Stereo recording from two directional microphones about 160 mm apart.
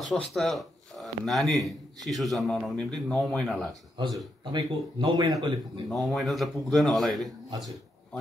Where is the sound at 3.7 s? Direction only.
25° right (ahead or behind).